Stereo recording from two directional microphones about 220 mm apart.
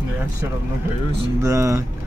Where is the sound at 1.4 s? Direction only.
15° right (ahead or behind).